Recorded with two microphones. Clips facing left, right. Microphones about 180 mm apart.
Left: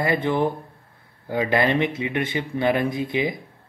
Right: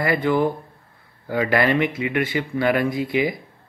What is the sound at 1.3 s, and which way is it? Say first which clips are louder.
Speech: right 1 dB; 20° left (ahead or behind).